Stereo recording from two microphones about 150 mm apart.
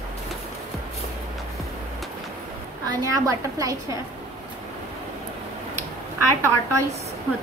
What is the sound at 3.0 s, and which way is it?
Speech, 25° right (ahead or behind).